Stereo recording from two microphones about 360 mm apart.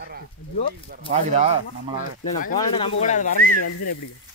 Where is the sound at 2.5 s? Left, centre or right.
Centre.